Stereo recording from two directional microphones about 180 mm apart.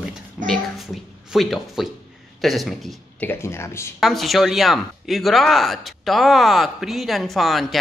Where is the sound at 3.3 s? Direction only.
15° left (ahead or behind).